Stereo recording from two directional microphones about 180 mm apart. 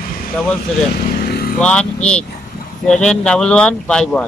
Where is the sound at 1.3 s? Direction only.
55° left (ahead or behind).